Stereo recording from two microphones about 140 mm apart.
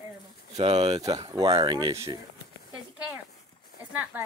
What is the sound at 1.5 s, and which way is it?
Speech, 30° right (ahead or behind).